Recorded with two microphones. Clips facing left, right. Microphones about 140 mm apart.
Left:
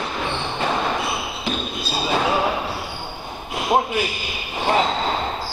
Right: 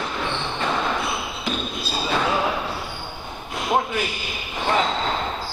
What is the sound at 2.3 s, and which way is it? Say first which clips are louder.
Basketball bounce: left 2 dB; 15° left (ahead or behind).